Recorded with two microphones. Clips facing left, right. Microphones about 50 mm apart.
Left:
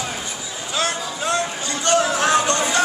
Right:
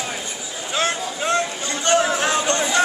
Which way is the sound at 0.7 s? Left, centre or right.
Right.